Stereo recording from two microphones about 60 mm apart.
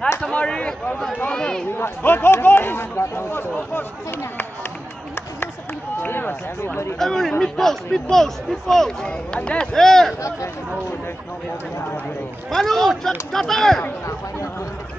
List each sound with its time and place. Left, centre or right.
0.2 s a man's voice: centre
1.7 s speech: left
6.0 s speech: left
7.0 s a man's voice: centre
12.4 s a man's voice: centre